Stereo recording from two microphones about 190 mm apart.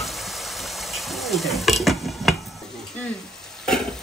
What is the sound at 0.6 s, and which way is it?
Stir, centre (ahead or behind).